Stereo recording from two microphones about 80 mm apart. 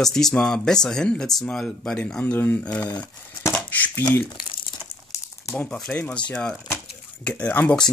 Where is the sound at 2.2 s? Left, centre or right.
Left.